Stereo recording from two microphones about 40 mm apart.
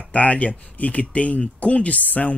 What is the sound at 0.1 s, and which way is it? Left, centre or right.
Speech, left.